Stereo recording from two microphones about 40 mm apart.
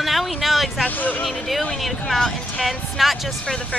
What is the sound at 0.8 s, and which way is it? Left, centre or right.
Speech, left.